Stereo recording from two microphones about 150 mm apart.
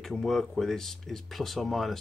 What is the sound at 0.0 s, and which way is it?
Speech, centre (ahead or behind).